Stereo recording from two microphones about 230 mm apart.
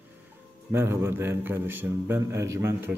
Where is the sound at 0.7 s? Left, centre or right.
Centre.